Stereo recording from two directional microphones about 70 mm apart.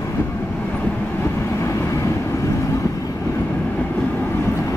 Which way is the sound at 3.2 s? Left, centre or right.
Left.